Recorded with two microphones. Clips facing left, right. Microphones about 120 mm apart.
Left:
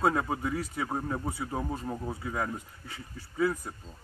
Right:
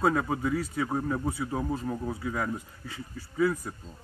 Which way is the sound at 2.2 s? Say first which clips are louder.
Even; 25° left (ahead or behind).